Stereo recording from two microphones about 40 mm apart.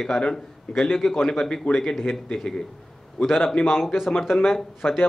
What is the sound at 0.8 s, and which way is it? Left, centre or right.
A man's voice, centre.